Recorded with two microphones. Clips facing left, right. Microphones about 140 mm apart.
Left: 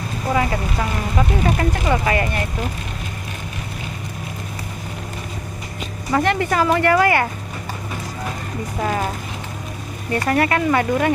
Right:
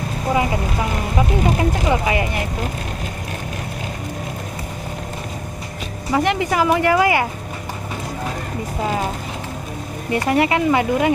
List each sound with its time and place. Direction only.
0.3 s speech: 15° right (ahead or behind)
6.1 s speech: 15° right (ahead or behind)
10.1 s speech: 15° right (ahead or behind)